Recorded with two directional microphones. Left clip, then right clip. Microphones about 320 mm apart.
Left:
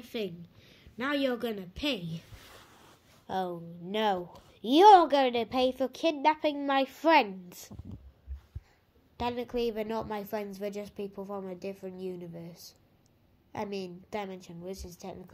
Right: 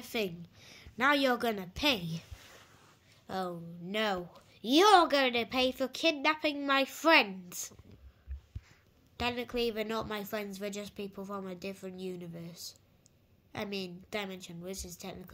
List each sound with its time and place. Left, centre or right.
0.0 s a woman's voice: centre
2.4 s a sound: left
3.3 s a woman's voice: centre
9.1 s a woman's voice: centre